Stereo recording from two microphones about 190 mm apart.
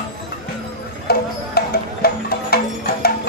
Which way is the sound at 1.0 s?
55° left (ahead or behind).